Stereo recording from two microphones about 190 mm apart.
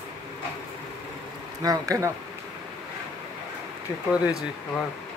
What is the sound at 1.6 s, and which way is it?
Speech, 20° right (ahead or behind).